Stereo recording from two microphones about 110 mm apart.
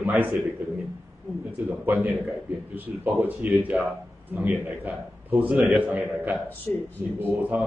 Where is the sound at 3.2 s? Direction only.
15° right (ahead or behind).